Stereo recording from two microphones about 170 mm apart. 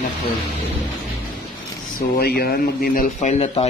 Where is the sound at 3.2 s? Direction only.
40° left (ahead or behind).